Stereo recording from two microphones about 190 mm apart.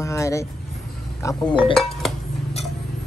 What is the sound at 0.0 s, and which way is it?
Music, 15° left (ahead or behind).